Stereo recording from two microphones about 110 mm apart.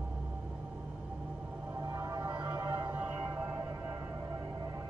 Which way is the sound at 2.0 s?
30° right (ahead or behind).